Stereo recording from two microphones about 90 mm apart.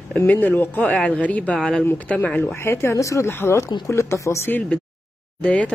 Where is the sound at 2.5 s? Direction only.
30° left (ahead or behind).